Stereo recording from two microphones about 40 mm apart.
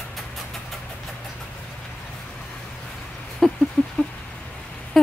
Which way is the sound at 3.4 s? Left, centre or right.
Centre.